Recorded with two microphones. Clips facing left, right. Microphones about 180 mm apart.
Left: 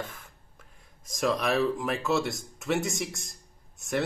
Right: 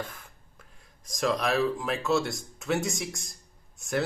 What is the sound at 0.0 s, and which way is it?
Speech, centre (ahead or behind).